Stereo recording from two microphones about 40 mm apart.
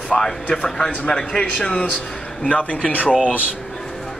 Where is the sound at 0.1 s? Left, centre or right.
Centre.